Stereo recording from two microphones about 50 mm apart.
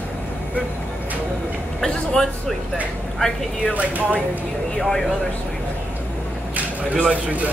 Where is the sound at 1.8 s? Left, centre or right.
Centre.